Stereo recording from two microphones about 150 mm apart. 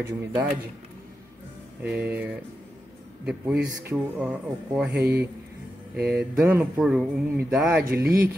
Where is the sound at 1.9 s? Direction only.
10° right (ahead or behind).